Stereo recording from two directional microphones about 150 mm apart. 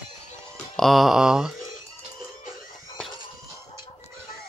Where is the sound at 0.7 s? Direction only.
Centre (ahead or behind).